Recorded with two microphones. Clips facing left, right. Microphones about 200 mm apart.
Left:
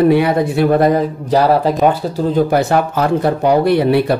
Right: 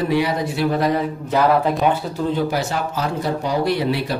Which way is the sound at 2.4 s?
55° left (ahead or behind).